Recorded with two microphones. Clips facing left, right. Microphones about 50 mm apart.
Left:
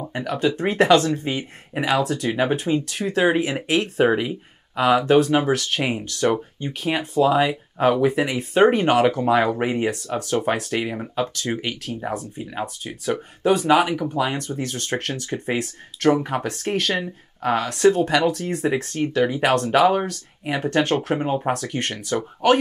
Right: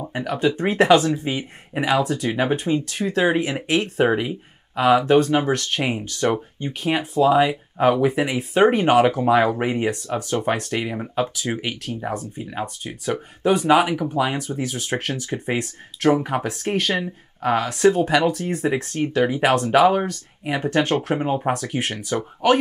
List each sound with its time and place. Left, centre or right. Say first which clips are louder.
0.0 s speech: right 1 dB; centre